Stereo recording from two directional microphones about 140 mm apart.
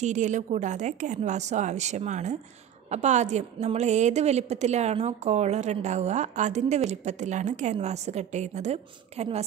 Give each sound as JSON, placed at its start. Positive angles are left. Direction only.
{"t": 0.0, "sound": "a woman's voice", "side_deg": -60}